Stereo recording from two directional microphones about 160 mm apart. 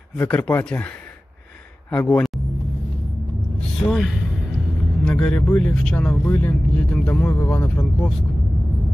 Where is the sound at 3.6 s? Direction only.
Centre (ahead or behind).